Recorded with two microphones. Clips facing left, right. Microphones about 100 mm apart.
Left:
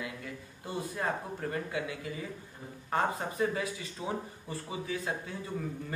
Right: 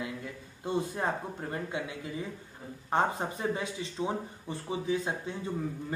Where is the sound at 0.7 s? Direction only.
25° right (ahead or behind).